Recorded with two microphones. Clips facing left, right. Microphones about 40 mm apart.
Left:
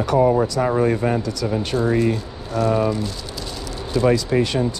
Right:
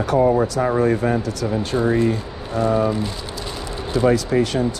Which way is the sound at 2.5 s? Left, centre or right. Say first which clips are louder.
Even; right.